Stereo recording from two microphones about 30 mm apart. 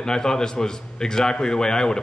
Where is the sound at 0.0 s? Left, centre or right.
Left.